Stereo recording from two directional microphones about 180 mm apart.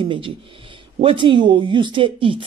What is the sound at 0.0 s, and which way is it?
Speech, 30° right (ahead or behind).